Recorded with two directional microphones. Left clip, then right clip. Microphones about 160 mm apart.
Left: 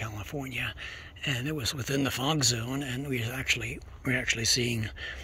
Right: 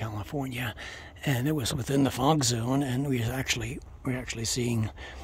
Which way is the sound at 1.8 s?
25° right (ahead or behind).